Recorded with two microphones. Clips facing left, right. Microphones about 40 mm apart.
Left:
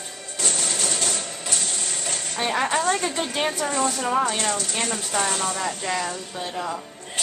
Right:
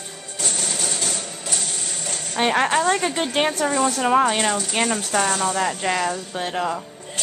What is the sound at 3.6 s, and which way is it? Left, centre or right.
Speech, centre.